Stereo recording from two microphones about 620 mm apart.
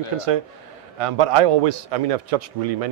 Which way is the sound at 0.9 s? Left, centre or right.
Right.